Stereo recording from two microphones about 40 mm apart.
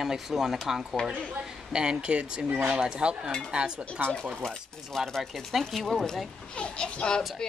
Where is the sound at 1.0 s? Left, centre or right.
Left.